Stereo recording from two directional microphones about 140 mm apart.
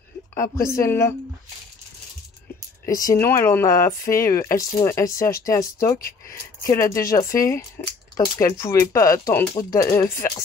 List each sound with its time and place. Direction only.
0.3 s speech: 20° left (ahead or behind)
2.8 s speech: 20° left (ahead or behind)